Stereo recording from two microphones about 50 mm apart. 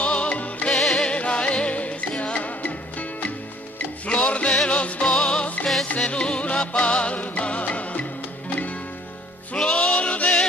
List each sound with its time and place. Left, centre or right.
0.0 s music: left